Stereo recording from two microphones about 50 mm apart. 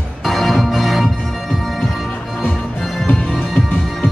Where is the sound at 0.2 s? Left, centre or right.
Centre.